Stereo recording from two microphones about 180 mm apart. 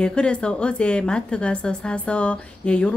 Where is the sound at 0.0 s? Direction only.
5° left (ahead or behind).